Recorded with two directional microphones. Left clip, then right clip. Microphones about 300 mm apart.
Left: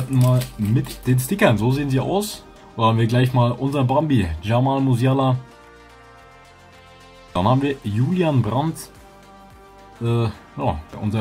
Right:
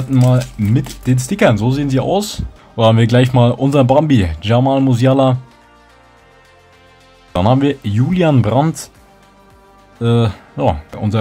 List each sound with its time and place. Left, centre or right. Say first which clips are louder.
0.1 s speech: right 7 dB; right
7.3 s speech: right 6 dB; centre
10.0 s speech: right 8 dB; centre